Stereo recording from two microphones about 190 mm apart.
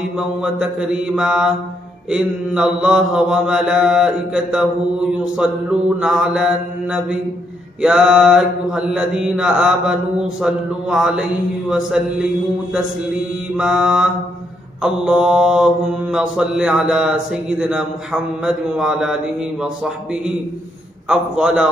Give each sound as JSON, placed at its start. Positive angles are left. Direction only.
{"t": 0.4, "sound": "mantra", "side_deg": -5}
{"t": 13.6, "sound": "mantra", "side_deg": -5}